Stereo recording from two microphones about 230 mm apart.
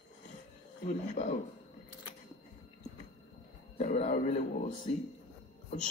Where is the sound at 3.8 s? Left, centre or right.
Left.